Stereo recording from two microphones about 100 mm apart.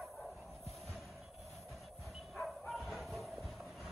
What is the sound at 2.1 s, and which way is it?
Bow-wow, centre (ahead or behind).